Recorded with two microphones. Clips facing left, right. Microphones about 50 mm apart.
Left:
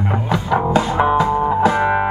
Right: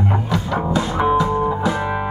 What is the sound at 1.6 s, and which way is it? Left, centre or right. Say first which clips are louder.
Music: left 6 dB; left.